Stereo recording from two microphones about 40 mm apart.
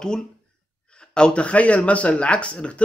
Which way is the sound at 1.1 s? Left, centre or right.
Left.